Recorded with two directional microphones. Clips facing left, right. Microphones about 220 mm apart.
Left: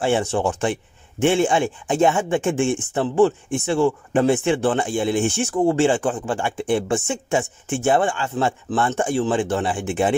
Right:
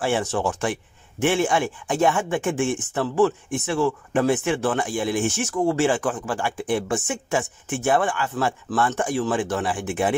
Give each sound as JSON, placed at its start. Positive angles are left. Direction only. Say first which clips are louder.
{"t": 0.0, "sound": "speech", "louder": "left 3 dB", "side_deg": 25}